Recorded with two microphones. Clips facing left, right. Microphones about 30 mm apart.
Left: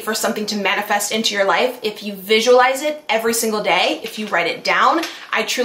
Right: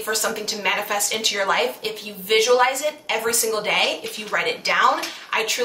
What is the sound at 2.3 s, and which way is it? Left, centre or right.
Speech, left.